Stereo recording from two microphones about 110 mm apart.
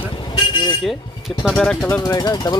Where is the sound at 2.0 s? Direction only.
35° left (ahead or behind).